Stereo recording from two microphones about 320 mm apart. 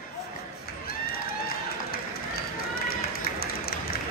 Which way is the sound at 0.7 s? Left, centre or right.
Left.